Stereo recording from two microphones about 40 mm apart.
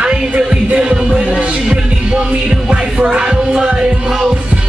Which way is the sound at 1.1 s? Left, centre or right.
Right.